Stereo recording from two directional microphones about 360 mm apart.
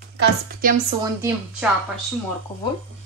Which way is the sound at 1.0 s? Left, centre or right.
Centre.